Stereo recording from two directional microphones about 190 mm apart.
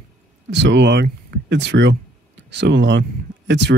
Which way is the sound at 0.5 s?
65° right (ahead or behind).